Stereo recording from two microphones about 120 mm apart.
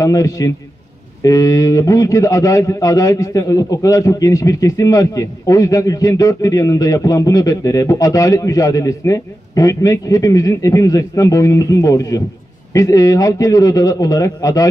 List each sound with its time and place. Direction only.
0.0 s a man's voice: 30° left (ahead or behind)